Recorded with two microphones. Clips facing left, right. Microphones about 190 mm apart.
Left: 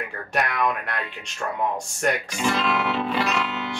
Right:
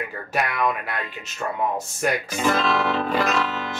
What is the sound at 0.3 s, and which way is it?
Speech, centre (ahead or behind).